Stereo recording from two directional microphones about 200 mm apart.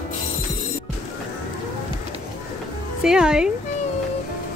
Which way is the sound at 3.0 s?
5° right (ahead or behind).